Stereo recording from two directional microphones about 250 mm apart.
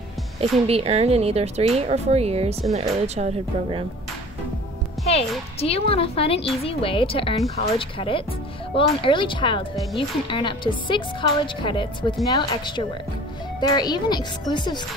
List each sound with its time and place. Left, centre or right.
0.4 s speech: right
5.6 s a woman's voice: left